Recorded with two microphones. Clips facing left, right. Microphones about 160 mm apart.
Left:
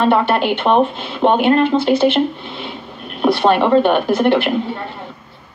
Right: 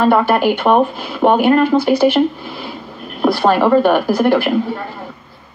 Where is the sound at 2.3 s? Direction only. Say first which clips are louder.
Right 1 dB; 20° left (ahead or behind).